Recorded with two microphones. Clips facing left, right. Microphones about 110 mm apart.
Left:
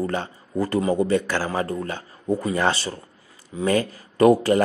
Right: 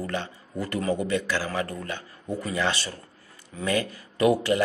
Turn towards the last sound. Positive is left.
turn(degrees=40)  # may be behind; listen again after turning